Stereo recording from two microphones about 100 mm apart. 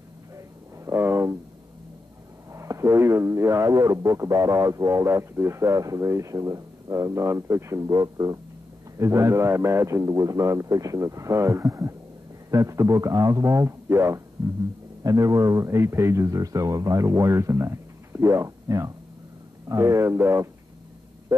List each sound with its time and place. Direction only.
0.8 s speech: 25° right (ahead or behind)
2.5 s speech: 30° right (ahead or behind)